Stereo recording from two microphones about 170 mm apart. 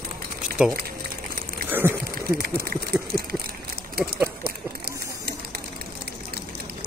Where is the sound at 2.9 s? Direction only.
65° right (ahead or behind).